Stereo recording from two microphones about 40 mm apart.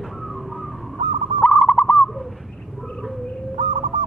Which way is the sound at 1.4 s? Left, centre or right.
Left.